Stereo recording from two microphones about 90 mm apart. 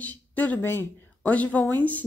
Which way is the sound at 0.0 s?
20° left (ahead or behind).